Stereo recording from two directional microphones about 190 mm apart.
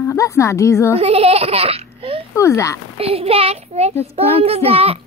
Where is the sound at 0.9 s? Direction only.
30° right (ahead or behind).